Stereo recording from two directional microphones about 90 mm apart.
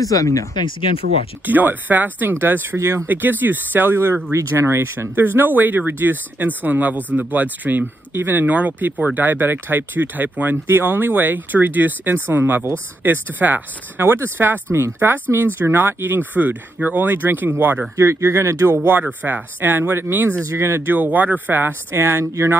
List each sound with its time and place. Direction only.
0.0 s speech: 40° left (ahead or behind)
0.6 s speech: 70° left (ahead or behind)
1.4 s speech: 20° right (ahead or behind)
17.9 s speech: 35° right (ahead or behind)
19.2 s speech: 20° right (ahead or behind)